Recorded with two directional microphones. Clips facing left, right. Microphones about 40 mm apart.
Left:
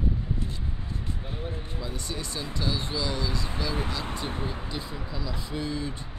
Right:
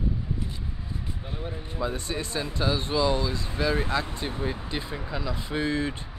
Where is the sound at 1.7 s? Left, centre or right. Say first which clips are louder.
Right 9 dB; right.